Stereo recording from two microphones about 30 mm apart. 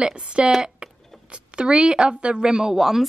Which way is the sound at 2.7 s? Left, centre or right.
Centre.